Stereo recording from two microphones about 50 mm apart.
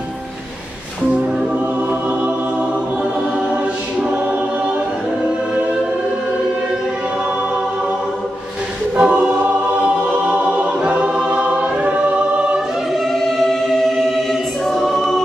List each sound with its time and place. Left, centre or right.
9.0 s choir: right
13.1 s choir: centre